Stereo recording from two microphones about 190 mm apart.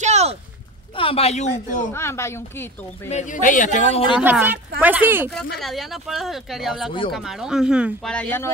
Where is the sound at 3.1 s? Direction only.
45° left (ahead or behind).